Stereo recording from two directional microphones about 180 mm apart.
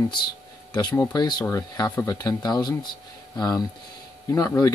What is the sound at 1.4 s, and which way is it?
Speech, 15° left (ahead or behind).